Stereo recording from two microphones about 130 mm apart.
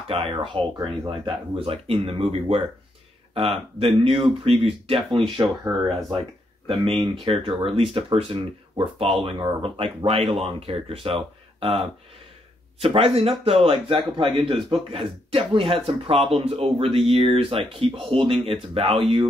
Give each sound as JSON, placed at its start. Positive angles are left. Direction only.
{"t": 0.1, "sound": "speech", "side_deg": -45}
{"t": 0.7, "sound": "speech", "side_deg": -30}
{"t": 1.6, "sound": "speech", "side_deg": -50}
{"t": 6.7, "sound": "speech", "side_deg": -45}
{"t": 12.8, "sound": "speech", "side_deg": -45}
{"t": 14.3, "sound": "a man's voice", "side_deg": 0}
{"t": 14.7, "sound": "speech", "side_deg": -45}